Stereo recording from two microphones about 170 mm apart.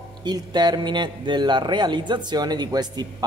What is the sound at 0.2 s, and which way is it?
A man's voice, 25° right (ahead or behind).